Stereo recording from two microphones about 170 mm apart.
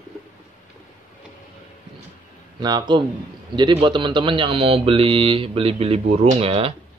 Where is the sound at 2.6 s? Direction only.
25° right (ahead or behind).